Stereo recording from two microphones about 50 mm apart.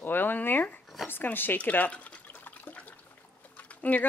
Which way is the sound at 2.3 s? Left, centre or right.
Left.